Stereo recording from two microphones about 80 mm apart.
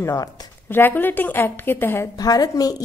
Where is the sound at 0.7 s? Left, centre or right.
Left.